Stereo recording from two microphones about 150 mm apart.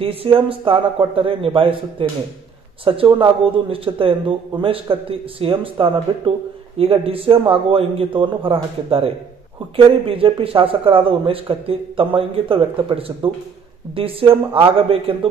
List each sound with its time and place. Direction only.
0.0 s a man's voice: 35° right (ahead or behind)